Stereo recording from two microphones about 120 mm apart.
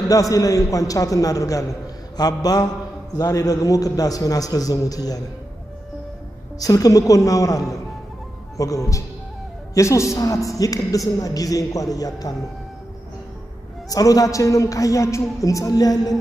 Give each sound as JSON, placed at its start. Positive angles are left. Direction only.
{"t": 0.1, "sound": "a man's voice", "side_deg": 30}
{"t": 6.6, "sound": "a man's voice", "side_deg": 30}
{"t": 13.8, "sound": "a man's voice", "side_deg": 30}